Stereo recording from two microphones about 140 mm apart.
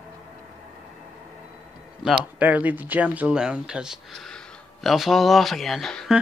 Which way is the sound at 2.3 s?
10° right (ahead or behind).